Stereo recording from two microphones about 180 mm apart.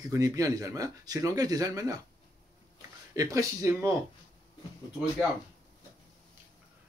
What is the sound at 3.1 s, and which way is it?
Speech, 20° right (ahead or behind).